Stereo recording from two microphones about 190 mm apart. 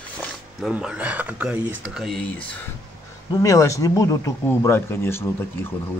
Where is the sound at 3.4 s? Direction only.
15° left (ahead or behind).